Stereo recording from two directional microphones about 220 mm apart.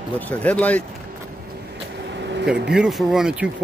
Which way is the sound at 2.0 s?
50° right (ahead or behind).